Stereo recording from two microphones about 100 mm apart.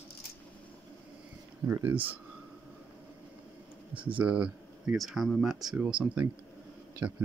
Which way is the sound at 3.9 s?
55° right (ahead or behind).